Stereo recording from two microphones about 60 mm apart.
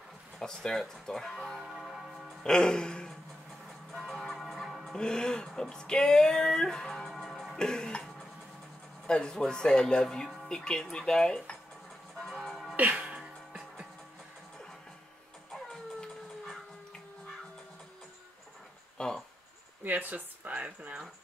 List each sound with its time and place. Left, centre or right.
0.4 s speech: centre
2.4 s music: centre
4.9 s speech: centre
7.1 s music: centre
7.5 s music: centre
9.0 s speech: centre
12.2 s music: centre
12.7 s music: right
15.5 s howl: centre
18.9 s a sound: centre
19.8 s speech: right